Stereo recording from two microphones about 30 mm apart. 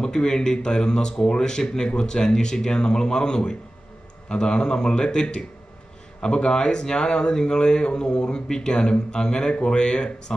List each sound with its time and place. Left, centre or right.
0.0 s speech: left